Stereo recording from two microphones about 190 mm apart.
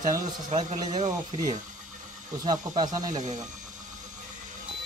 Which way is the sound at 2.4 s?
25° right (ahead or behind).